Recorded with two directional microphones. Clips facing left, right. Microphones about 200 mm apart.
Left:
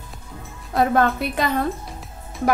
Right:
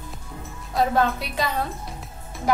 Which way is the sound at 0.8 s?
55° left (ahead or behind).